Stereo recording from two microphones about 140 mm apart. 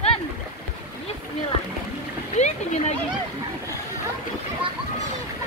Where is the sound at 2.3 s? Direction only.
55° left (ahead or behind).